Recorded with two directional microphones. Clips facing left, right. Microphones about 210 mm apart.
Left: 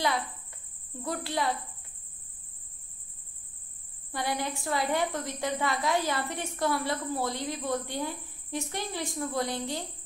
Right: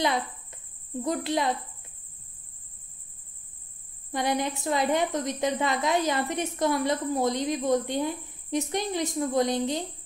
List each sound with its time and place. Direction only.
1.0 s a woman's voice: 20° right (ahead or behind)
4.1 s a woman's voice: 20° right (ahead or behind)